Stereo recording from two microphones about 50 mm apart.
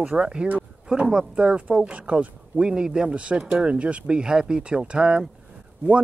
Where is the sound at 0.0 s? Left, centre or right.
Right.